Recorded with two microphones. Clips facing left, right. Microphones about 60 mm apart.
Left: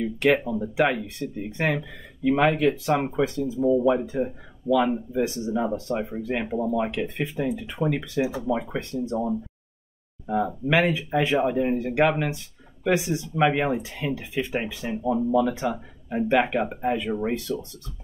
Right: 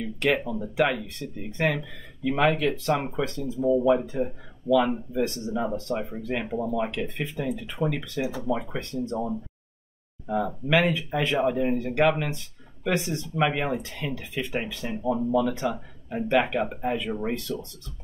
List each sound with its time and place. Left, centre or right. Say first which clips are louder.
0.0 s speech: left 4 dB; centre